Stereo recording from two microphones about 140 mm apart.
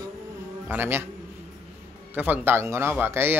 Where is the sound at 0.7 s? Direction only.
15° right (ahead or behind).